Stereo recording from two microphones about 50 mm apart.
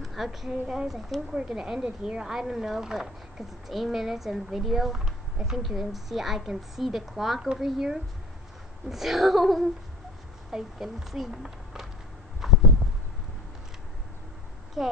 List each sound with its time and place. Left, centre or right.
0.0 s a woman's voice: centre
12.4 s a sound: centre
14.8 s a woman's voice: centre